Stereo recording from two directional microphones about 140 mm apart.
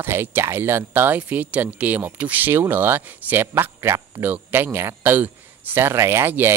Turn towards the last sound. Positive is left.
turn(degrees=-15)  # may be behind; listen again after turning